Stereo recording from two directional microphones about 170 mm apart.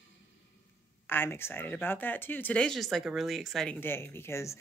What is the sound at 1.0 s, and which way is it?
Speech, 15° left (ahead or behind).